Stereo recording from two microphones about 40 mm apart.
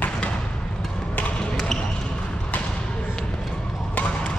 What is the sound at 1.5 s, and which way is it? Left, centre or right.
Basketball bounce, centre.